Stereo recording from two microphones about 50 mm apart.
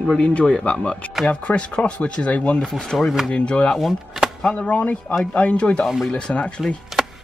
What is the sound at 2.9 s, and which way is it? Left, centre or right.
Speech, centre.